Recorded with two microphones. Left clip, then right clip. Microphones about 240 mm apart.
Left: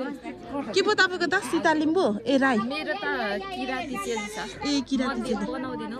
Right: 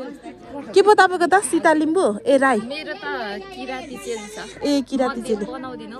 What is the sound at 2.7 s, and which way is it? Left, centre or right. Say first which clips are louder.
Speech: right 1 dB; centre.